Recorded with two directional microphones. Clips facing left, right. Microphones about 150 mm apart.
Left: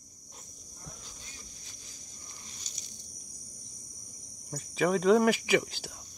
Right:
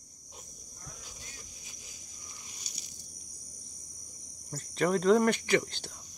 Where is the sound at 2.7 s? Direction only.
10° right (ahead or behind).